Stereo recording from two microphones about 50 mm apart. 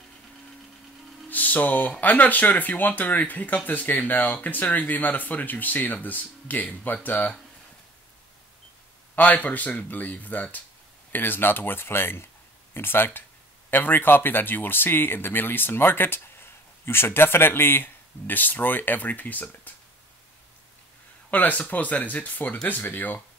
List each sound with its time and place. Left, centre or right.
1.3 s speech: left
9.1 s speech: left
21.3 s speech: left